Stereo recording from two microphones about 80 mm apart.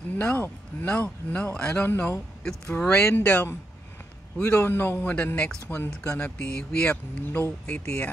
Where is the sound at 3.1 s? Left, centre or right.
Left.